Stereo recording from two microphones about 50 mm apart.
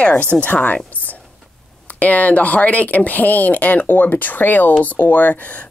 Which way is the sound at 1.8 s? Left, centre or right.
Left.